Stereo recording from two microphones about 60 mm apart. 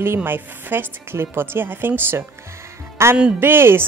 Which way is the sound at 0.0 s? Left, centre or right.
Right.